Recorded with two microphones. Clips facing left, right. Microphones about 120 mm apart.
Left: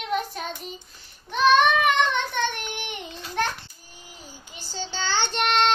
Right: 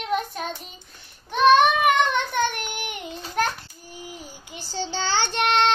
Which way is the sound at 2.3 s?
10° right (ahead or behind).